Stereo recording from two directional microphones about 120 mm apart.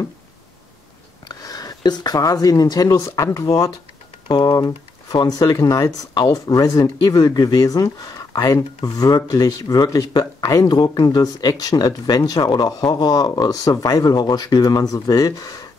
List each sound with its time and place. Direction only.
1.3 s speech: 30° left (ahead or behind)